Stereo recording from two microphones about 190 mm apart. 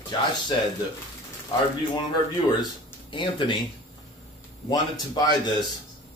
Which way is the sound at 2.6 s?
25° left (ahead or behind).